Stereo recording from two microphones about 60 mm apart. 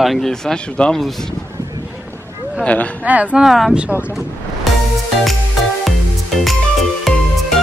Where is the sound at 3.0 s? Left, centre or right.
Right.